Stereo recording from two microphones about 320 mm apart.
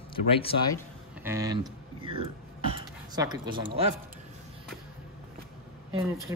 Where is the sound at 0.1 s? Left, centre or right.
Centre.